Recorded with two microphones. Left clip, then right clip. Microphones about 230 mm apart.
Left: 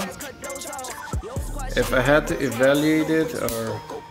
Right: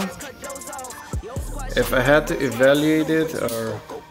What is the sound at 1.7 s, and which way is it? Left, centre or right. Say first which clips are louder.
Speech: right 2 dB; centre.